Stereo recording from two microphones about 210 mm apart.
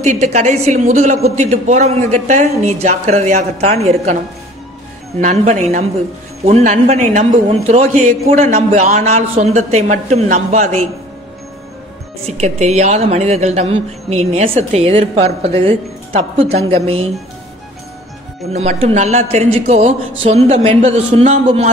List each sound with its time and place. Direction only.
0.0 s speech: 35° right (ahead or behind)
5.2 s speech: 35° right (ahead or behind)
12.2 s speech: 30° right (ahead or behind)
18.5 s speech: 30° right (ahead or behind)